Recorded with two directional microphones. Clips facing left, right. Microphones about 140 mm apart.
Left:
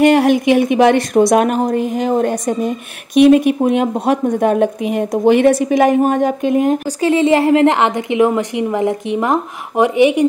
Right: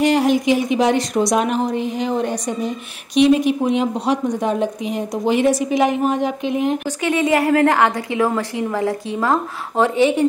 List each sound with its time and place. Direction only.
0.0 s a woman's voice: 60° left (ahead or behind); by 7.1 s 45° left (ahead or behind)
7.1 s a woman's voice: 25° left (ahead or behind)